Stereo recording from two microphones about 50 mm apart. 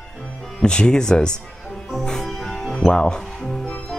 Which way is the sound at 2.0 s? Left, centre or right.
Centre.